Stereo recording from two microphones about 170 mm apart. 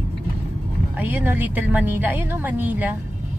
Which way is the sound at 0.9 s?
10° right (ahead or behind).